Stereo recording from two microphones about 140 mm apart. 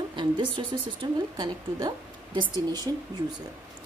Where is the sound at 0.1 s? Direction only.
35° right (ahead or behind).